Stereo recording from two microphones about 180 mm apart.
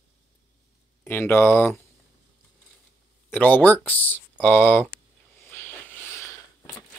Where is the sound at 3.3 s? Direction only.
10° left (ahead or behind).